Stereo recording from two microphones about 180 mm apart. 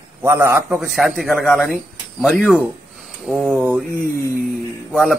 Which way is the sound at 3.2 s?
10° right (ahead or behind).